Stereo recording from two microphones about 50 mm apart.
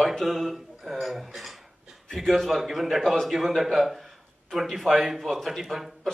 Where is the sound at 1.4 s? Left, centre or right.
Centre.